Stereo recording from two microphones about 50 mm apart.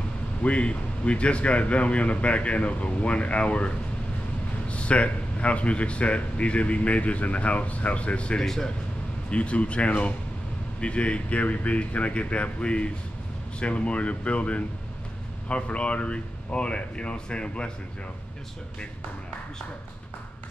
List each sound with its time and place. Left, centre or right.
0.4 s speech: left
8.5 s speech: centre
9.3 s speech: left